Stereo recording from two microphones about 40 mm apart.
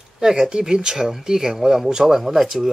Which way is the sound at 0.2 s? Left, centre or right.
Centre.